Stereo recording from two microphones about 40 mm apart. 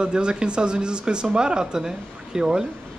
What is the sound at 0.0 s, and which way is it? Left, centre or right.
A man's voice, right.